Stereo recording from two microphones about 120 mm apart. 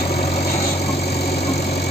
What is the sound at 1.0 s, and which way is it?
Engine, 60° left (ahead or behind).